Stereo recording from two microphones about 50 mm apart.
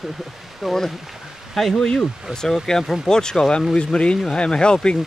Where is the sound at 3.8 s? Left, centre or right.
Centre.